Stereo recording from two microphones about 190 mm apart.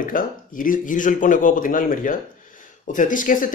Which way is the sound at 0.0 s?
45° left (ahead or behind).